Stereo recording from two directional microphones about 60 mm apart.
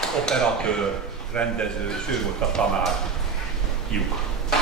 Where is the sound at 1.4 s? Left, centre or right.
Centre.